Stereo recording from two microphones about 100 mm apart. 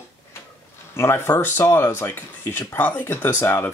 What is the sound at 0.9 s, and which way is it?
Speech, 25° left (ahead or behind).